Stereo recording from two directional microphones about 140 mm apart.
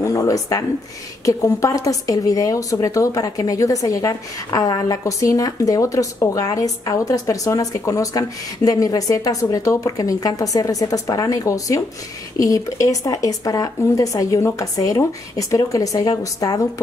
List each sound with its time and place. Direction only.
0.0 s a woman's voice: 25° left (ahead or behind)